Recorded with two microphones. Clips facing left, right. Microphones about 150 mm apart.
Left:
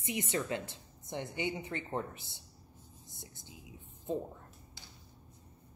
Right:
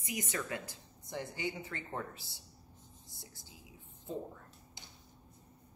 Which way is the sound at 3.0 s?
20° left (ahead or behind).